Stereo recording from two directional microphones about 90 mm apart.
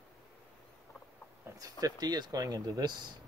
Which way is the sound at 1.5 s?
30° right (ahead or behind).